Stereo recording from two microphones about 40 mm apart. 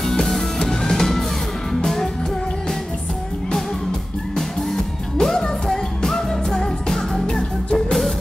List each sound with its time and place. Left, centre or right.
0.0 s music: centre
5.1 s music: centre